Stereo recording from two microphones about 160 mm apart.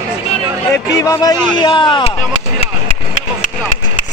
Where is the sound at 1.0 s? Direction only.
20° left (ahead or behind).